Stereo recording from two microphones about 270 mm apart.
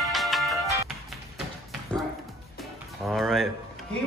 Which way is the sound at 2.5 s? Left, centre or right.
Centre.